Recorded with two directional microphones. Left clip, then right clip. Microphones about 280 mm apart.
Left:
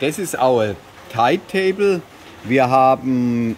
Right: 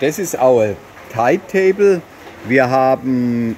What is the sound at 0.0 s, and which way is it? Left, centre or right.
Speech, centre.